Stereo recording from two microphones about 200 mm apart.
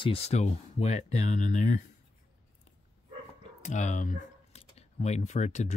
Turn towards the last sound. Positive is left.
turn(degrees=35)  # may be behind; listen again after turning